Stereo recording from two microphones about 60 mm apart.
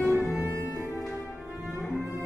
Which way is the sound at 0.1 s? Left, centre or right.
Left.